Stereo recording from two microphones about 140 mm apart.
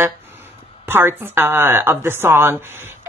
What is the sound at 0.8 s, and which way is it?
Speech, 15° right (ahead or behind).